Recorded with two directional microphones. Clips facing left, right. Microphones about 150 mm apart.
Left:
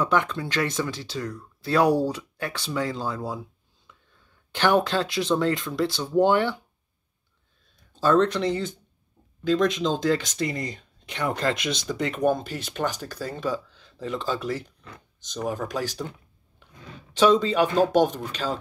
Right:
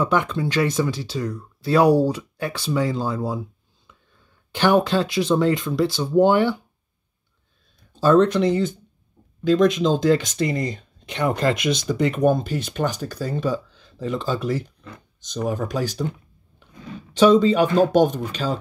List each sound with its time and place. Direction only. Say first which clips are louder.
0.0 s speech: right 3 dB; 10° right (ahead or behind)
4.5 s speech: right 3 dB; 5° right (ahead or behind)
8.0 s speech: right 5 dB; 10° right (ahead or behind)
10.5 s speech: right 6 dB; 30° right (ahead or behind); by 16.1 s centre (ahead or behind)
17.1 s speech: right 5 dB; centre (ahead or behind)